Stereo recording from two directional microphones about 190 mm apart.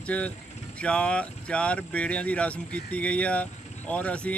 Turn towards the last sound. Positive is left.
turn(degrees=5)  # may be behind; listen again after turning